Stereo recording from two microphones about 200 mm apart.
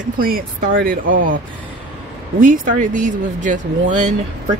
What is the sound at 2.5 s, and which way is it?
Speech, 40° right (ahead or behind).